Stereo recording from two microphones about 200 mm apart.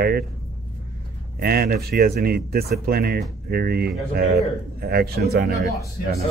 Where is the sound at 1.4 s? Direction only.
50° right (ahead or behind).